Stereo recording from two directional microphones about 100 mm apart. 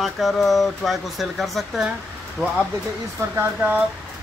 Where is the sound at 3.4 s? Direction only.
15° right (ahead or behind).